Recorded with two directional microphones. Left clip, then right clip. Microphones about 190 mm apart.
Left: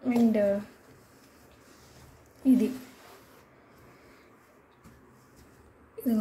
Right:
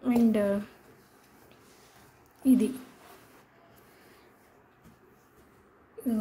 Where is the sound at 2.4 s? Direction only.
15° right (ahead or behind).